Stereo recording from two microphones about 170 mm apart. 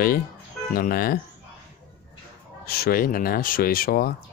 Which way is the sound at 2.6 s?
65° left (ahead or behind).